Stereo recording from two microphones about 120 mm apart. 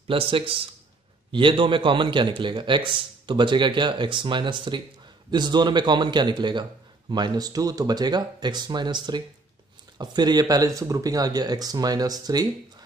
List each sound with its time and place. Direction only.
0.1 s a man's voice: 50° right (ahead or behind); by 12.4 s 35° right (ahead or behind)